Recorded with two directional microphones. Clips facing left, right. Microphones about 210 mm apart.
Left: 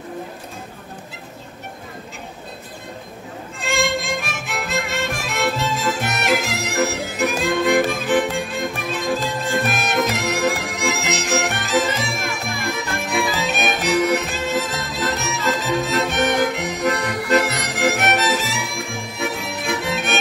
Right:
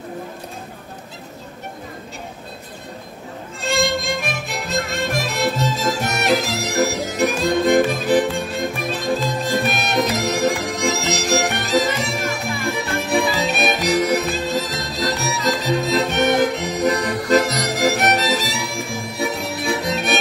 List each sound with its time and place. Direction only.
3.6 s music: 35° right (ahead or behind)